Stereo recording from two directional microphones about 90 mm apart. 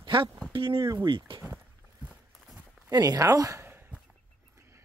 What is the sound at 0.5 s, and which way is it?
Speech, 70° right (ahead or behind).